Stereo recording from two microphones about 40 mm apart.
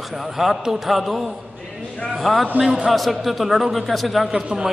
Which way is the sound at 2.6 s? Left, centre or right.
Centre.